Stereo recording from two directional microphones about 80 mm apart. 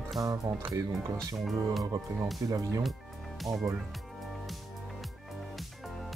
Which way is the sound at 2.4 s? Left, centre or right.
Right.